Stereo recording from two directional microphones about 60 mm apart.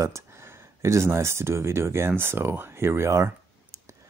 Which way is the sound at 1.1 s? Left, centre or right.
Right.